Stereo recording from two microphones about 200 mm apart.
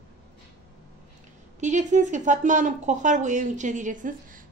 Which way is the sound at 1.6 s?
35° right (ahead or behind).